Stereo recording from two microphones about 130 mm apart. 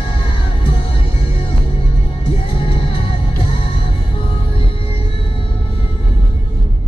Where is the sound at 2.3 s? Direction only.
45° left (ahead or behind).